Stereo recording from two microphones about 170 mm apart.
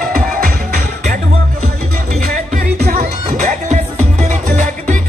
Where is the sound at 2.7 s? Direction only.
60° right (ahead or behind).